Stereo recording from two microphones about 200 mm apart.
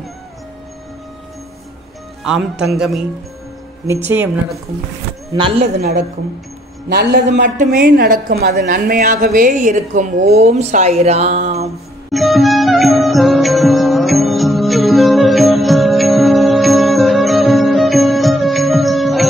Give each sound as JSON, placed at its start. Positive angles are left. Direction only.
{"t": 2.2, "sound": "a man's voice", "side_deg": -5}
{"t": 5.3, "sound": "speech", "side_deg": -25}
{"t": 5.8, "sound": "a woman's voice", "side_deg": -50}
{"t": 7.5, "sound": "a woman's voice", "side_deg": -45}
{"t": 12.1, "sound": "music", "side_deg": 0}